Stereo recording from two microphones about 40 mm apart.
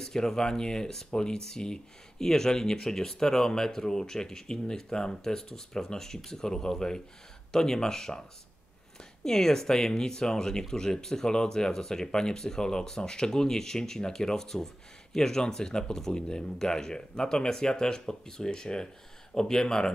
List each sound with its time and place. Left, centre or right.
0.0 s speech: centre
9.2 s speech: centre